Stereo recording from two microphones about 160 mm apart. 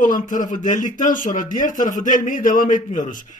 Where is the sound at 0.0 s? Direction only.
55° left (ahead or behind).